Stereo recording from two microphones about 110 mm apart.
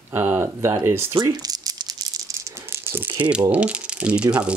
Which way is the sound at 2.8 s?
20° right (ahead or behind).